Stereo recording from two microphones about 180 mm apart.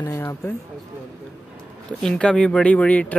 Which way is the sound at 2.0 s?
5° left (ahead or behind).